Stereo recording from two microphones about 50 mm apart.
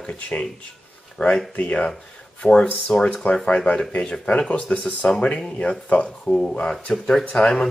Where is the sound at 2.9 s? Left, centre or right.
Left.